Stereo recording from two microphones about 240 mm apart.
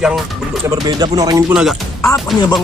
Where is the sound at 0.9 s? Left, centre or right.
Centre.